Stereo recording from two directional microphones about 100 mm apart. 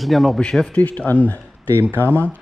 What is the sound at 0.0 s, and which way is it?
Speech, centre (ahead or behind).